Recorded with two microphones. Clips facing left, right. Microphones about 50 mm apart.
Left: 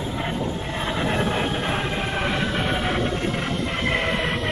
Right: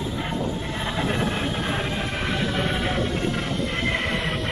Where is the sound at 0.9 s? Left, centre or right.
Centre.